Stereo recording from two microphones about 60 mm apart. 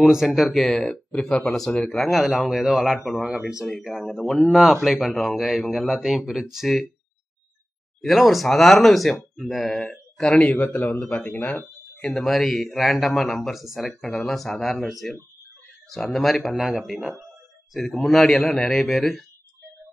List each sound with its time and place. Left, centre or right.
0.1 s speech: centre
8.0 s a man's voice: centre
10.5 s a man's voice: left
12.0 s speech: centre